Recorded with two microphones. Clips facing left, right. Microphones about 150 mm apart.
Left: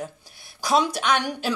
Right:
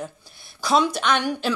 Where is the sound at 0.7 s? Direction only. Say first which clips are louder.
Right 1 dB; 10° left (ahead or behind).